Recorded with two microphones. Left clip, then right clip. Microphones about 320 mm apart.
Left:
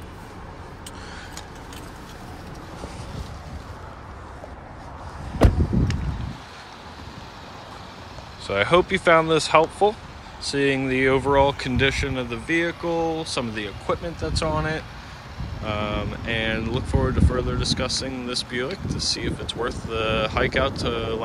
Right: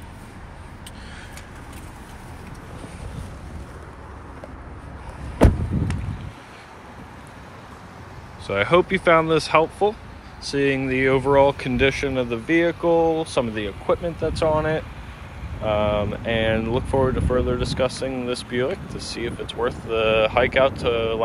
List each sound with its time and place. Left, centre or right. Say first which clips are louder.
8.5 s speech: right 1 dB; centre